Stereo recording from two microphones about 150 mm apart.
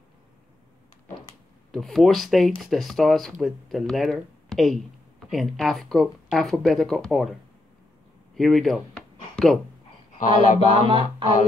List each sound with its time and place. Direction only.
1.7 s speech: centre (ahead or behind)
8.4 s a sound: centre (ahead or behind)
10.1 s speech: 60° left (ahead or behind)
10.9 s music: 30° right (ahead or behind)